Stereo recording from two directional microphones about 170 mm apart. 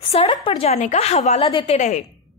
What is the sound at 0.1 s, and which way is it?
A woman's voice, 35° left (ahead or behind).